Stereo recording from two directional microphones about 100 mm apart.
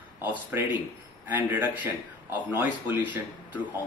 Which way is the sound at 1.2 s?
15° right (ahead or behind).